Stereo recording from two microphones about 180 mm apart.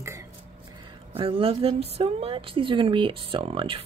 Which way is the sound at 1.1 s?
30° right (ahead or behind).